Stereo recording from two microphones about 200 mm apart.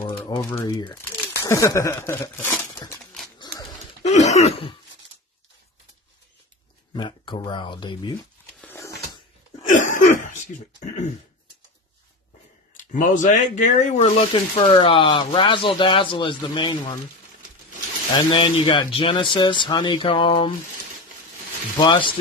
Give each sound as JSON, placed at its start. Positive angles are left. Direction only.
{"t": 0.3, "sound": "speech", "side_deg": 15}
{"t": 4.0, "sound": "throat clearing", "side_deg": 35}
{"t": 6.9, "sound": "speech", "side_deg": 25}
{"t": 8.5, "sound": "wheeze", "side_deg": 10}
{"t": 9.7, "sound": "throat clearing", "side_deg": 40}
{"t": 12.7, "sound": "speech", "side_deg": 40}
{"t": 18.1, "sound": "speech", "side_deg": 25}
{"t": 21.7, "sound": "speech", "side_deg": 25}